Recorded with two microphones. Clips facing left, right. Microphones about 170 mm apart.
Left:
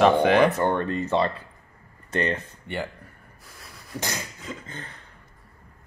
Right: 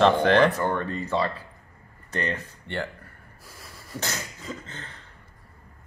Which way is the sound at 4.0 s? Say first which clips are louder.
Left 1 dB; 15° left (ahead or behind).